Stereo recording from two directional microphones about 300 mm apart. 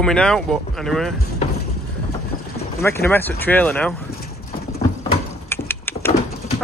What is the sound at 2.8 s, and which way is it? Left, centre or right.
Speech, centre.